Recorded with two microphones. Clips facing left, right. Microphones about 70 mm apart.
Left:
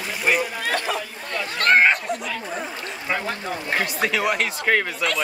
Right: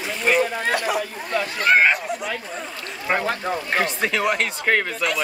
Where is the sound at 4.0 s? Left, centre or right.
Centre.